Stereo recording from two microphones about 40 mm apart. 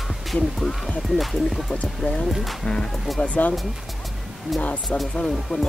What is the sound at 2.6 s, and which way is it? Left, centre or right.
Speech, centre.